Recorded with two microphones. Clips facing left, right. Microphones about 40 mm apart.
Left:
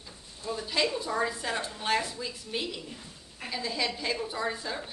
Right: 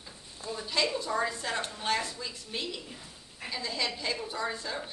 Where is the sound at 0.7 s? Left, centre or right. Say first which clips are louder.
Left 1 dB; centre.